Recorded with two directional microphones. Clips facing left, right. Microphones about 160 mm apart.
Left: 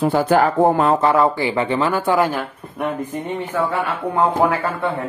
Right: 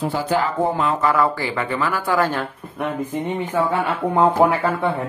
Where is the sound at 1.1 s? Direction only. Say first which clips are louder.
Left 3 dB; 20° left (ahead or behind).